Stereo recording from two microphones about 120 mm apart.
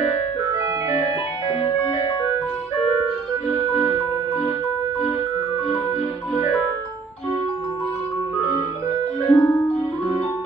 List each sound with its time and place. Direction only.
0.6 s organ: 25° right (ahead or behind)
3.7 s music: 25° right (ahead or behind)
9.3 s music: 15° left (ahead or behind)